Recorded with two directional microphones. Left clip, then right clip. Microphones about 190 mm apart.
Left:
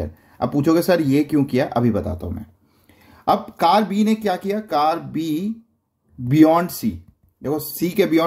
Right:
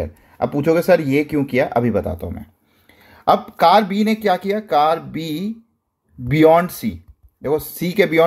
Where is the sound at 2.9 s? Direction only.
15° right (ahead or behind).